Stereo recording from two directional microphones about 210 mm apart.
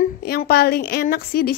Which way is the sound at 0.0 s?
45° left (ahead or behind).